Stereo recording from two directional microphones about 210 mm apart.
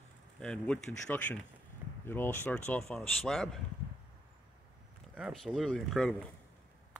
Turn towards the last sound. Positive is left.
turn(degrees=5)  # may be behind; listen again after turning